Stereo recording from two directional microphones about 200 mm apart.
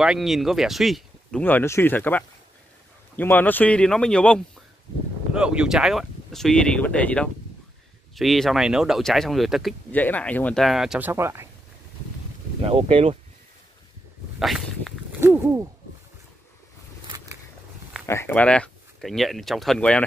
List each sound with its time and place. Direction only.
0.0 s speech: centre (ahead or behind)
12.6 s speech: 30° right (ahead or behind)
14.4 s speech: centre (ahead or behind)
15.1 s a sound: 15° right (ahead or behind)
18.0 s speech: 10° left (ahead or behind)